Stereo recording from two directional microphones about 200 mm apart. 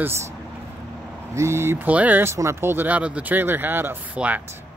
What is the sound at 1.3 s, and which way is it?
Speech, 15° right (ahead or behind).